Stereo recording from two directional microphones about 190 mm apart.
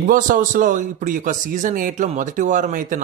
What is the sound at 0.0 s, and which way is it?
A man's voice, 45° right (ahead or behind).